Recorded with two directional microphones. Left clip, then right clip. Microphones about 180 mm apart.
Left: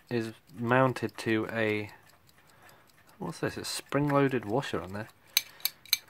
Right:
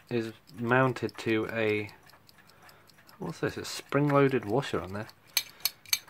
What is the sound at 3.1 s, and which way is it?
Speech, 35° left (ahead or behind).